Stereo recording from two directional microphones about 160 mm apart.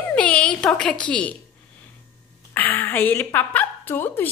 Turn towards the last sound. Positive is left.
turn(degrees=10)  # may be behind; listen again after turning